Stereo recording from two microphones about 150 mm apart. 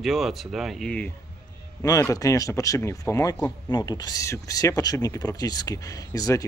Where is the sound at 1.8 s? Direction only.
20° left (ahead or behind).